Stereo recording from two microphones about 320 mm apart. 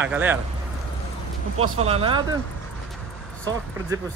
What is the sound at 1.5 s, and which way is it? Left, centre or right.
Speech, right.